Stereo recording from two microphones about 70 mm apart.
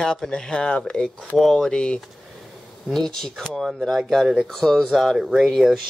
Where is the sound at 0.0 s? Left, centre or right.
Centre.